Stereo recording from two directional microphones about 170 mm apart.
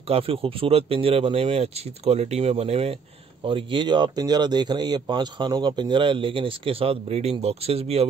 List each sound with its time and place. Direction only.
0.1 s speech: 35° right (ahead or behind)